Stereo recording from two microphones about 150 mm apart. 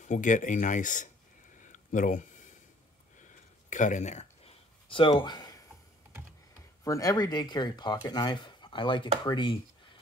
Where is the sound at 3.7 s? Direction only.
55° left (ahead or behind); by 5.5 s 30° left (ahead or behind).